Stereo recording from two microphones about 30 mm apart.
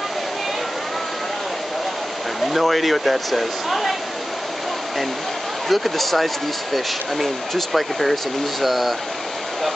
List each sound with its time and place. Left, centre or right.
2.4 s speech: centre
5.7 s speech: centre